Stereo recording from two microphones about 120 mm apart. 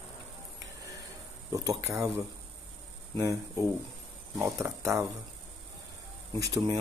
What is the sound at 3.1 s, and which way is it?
Speech, 25° right (ahead or behind).